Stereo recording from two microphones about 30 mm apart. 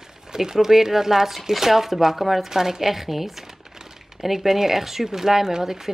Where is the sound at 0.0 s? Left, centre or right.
Centre.